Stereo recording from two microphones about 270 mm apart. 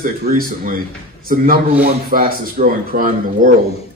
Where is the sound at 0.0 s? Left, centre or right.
Right.